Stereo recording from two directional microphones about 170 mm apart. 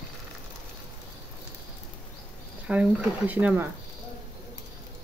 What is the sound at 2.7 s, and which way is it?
Speech, 10° right (ahead or behind).